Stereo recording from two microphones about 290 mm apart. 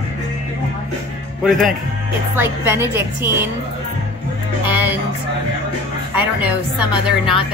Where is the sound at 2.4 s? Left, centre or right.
Centre.